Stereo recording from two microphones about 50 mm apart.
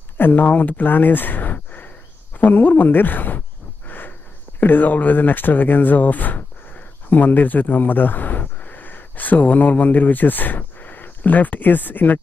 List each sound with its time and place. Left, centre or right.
0.2 s speech: left
2.3 s a sound: left
4.6 s speech: left